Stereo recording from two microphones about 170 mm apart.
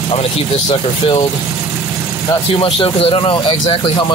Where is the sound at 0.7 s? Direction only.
25° left (ahead or behind).